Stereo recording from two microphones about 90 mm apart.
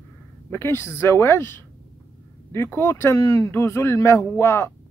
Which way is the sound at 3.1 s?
35° left (ahead or behind).